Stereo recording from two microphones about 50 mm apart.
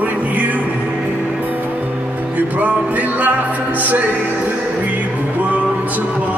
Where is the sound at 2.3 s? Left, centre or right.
Right.